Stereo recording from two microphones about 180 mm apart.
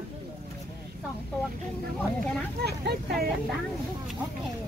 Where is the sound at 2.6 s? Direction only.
60° right (ahead or behind).